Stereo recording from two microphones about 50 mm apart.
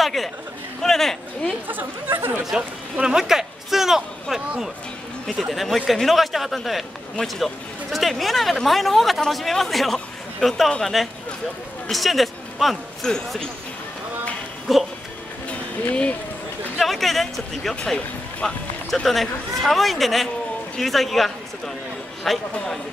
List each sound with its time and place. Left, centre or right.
0.0 s a sound: centre
0.8 s speech: centre
1.7 s speech: right
2.4 s a man's voice: centre
10.4 s speech: centre
10.8 s a man's voice: centre
13.0 s speech: centre
14.7 s a man's voice: centre
15.9 s speech: left
16.7 s a man's voice: centre
17.8 s speech: centre
19.0 s a man's voice: centre